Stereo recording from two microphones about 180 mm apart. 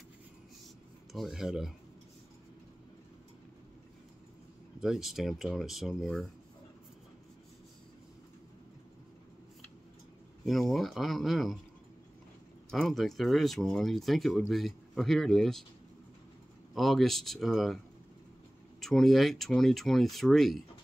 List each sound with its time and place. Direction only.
1.1 s speech: centre (ahead or behind)
4.7 s speech: centre (ahead or behind)
10.4 s speech: centre (ahead or behind)
12.7 s speech: centre (ahead or behind)
16.7 s speech: centre (ahead or behind)
18.8 s speech: centre (ahead or behind)